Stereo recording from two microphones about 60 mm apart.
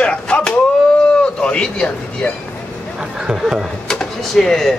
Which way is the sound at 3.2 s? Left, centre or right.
Centre.